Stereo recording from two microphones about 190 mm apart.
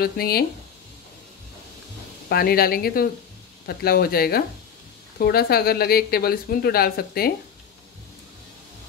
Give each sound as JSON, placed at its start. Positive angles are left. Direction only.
{"t": 0.0, "sound": "speech", "side_deg": 55}
{"t": 2.2, "sound": "speech", "side_deg": 55}